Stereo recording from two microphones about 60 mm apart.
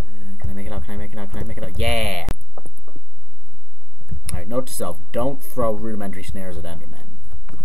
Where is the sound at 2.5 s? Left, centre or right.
Centre.